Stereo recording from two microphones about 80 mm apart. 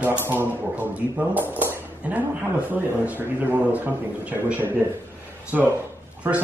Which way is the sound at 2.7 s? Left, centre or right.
Right.